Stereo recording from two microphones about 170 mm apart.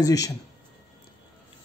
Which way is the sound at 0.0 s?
20° left (ahead or behind).